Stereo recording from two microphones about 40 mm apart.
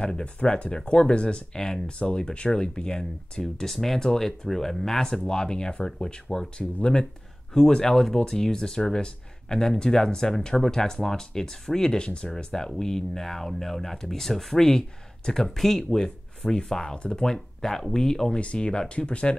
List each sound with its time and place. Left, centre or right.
0.0 s speech: left
6.8 s speech: left
17.2 s speech: centre
18.4 s speech: left